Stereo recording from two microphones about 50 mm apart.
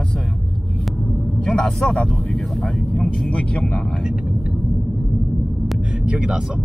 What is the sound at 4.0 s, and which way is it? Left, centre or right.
Speech, centre.